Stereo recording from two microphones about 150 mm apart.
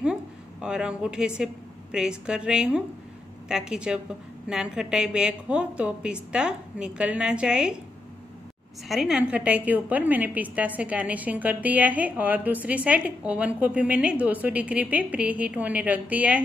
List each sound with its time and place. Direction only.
0.0 s a woman's voice: 5° right (ahead or behind)
8.8 s a woman's voice: 5° right (ahead or behind)